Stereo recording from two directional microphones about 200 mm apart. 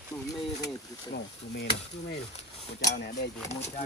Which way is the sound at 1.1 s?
55° left (ahead or behind).